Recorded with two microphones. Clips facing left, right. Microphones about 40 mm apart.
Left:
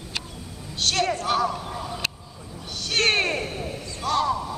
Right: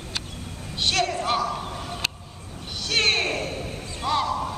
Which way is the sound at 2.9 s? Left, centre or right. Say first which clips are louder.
Left 1 dB; centre.